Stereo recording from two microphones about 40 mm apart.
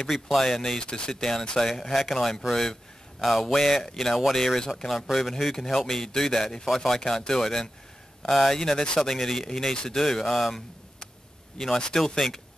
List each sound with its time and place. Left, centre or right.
0.0 s speech: centre
0.7 s speech: left
1.7 s speech: centre
2.1 s speech: centre
3.2 s speech: centre
8.5 s speech: centre
11.5 s speech: centre